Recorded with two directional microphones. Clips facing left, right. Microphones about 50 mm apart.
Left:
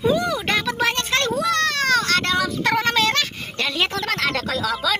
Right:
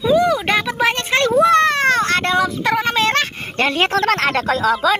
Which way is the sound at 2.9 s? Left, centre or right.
Right.